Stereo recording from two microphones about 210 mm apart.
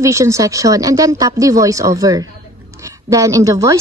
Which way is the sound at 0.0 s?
15° right (ahead or behind).